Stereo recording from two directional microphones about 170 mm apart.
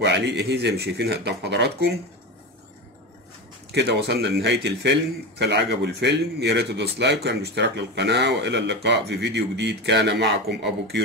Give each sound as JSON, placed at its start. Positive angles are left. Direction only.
{"t": 0.0, "sound": "speech", "side_deg": -90}
{"t": 3.7, "sound": "a man's voice", "side_deg": -90}